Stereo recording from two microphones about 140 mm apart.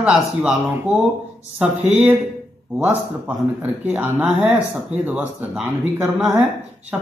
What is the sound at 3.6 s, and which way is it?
A man's voice, 10° right (ahead or behind).